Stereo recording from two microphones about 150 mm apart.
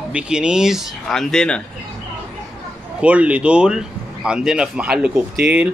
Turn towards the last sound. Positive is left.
turn(degrees=-10)  # may be behind; listen again after turning